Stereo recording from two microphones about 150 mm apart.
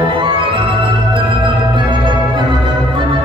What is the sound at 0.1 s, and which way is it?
Music, 35° right (ahead or behind).